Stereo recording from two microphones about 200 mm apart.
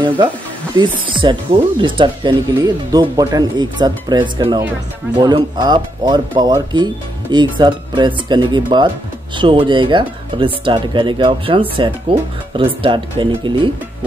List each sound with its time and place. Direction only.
0.7 s speech: 25° right (ahead or behind)